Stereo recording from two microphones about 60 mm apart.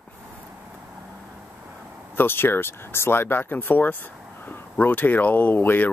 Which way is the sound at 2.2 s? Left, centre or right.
Left.